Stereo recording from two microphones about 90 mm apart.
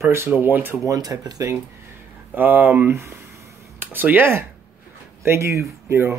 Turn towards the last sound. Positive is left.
turn(degrees=-25)  # may be behind; listen again after turning